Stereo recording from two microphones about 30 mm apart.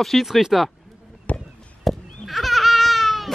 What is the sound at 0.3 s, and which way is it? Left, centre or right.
Speech, centre.